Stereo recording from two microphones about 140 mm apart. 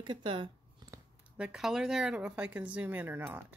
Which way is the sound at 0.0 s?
35° right (ahead or behind).